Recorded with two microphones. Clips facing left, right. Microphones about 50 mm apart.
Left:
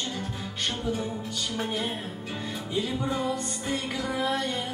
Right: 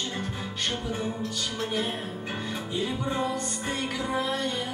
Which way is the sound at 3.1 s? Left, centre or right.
Right.